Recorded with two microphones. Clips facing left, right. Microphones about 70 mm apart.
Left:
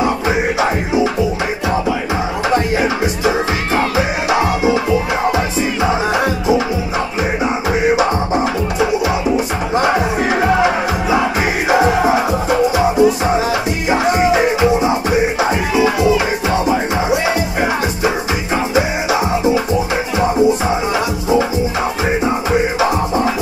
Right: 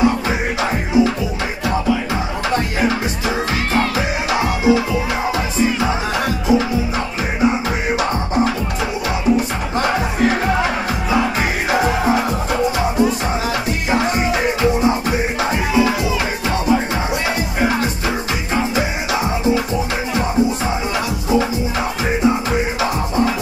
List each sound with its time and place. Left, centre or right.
0.6 s music: centre
3.3 s music: centre
9.8 s music: centre
22.8 s music: centre